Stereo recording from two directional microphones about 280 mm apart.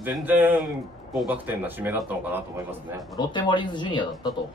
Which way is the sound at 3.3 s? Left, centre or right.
Centre.